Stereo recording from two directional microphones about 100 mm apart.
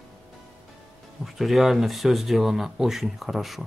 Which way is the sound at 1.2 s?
Centre (ahead or behind).